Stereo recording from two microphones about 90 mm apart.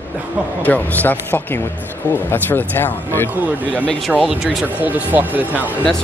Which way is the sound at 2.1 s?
20° left (ahead or behind).